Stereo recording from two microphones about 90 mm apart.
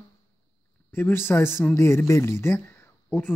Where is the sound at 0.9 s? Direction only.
25° left (ahead or behind).